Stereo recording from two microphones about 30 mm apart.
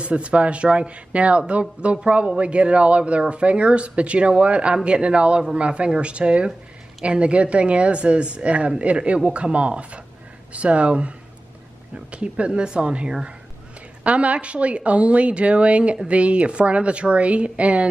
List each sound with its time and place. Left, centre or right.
0.0 s a woman's voice: right
14.0 s a woman's voice: right